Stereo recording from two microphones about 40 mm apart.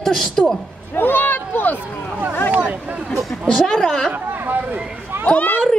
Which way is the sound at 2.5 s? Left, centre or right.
Right.